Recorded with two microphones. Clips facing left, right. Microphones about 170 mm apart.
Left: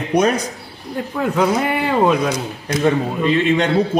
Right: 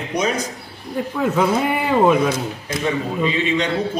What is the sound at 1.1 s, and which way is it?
A man's voice, centre (ahead or behind).